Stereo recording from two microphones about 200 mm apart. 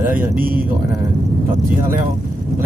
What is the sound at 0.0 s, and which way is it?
Speech, 10° right (ahead or behind).